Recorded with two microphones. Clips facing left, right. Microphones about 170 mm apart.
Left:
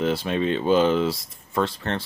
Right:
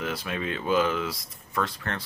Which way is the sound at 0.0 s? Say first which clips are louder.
Left 8 dB; 30° left (ahead or behind).